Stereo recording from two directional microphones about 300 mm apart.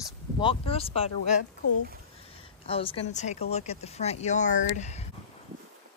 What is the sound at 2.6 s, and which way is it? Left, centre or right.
Speech, centre.